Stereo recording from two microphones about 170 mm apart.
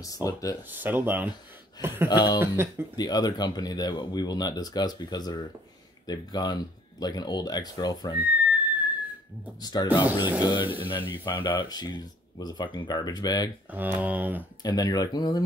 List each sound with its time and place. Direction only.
0.0 s speech: 20° left (ahead or behind)
0.7 s speech: 10° right (ahead or behind)
2.0 s speech: 25° left (ahead or behind)
2.4 s speech: 15° right (ahead or behind)
3.0 s speech: 25° left (ahead or behind)
8.2 s whistling: 10° right (ahead or behind)
9.6 s speech: 25° left (ahead or behind)
13.7 s speech: 10° right (ahead or behind)
14.6 s speech: 20° left (ahead or behind)